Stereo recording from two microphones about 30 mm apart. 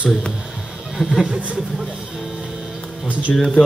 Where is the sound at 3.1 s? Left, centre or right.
Right.